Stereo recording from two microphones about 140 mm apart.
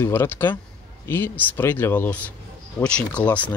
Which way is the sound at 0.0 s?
20° left (ahead or behind).